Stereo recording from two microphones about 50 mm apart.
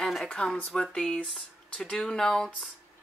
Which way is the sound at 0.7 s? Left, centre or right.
Centre.